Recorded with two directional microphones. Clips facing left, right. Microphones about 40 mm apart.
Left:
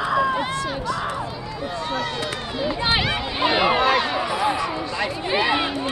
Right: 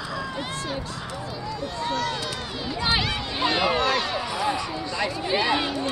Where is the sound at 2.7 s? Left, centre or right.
Left.